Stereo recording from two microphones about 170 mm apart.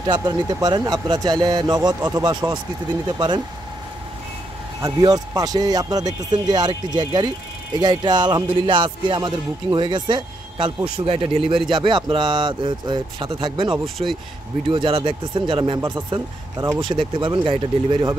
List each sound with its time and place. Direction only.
0.0 s music: 25° right (ahead or behind)
4.8 s music: 20° right (ahead or behind)